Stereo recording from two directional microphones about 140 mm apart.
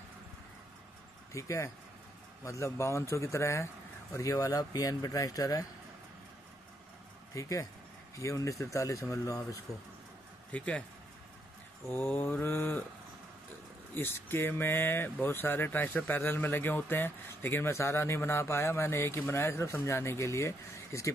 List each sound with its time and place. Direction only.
1.3 s speech: 20° left (ahead or behind)
7.3 s speech: 25° left (ahead or behind)
10.5 s speech: 10° left (ahead or behind)
11.9 s speech: 15° left (ahead or behind)
13.9 s speech: 15° left (ahead or behind)